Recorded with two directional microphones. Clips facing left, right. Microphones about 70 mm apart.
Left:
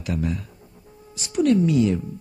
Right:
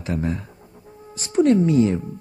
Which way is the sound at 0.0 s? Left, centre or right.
Right.